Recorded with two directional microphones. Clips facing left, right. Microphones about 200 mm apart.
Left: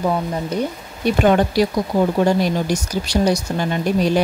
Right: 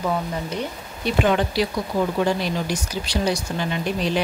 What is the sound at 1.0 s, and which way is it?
Speech, 45° left (ahead or behind).